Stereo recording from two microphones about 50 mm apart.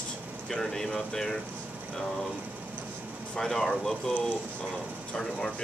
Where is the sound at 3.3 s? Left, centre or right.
Centre.